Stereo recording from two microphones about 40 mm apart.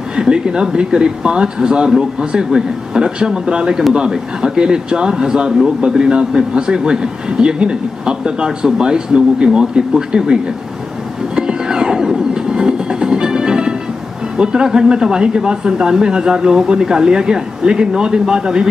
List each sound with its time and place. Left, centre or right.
0.1 s a man's voice: right
11.3 s train: right
14.3 s a man's voice: centre